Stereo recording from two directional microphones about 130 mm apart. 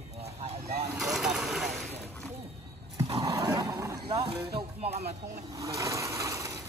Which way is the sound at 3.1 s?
25° right (ahead or behind).